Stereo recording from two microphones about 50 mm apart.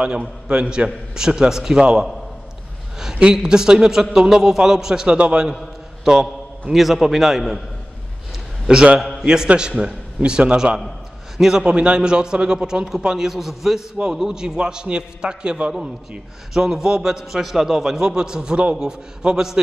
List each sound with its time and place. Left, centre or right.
0.0 s a man's voice: centre
1.8 s a man's voice: centre
3.2 s a man's voice: centre
9.2 s a man's voice: centre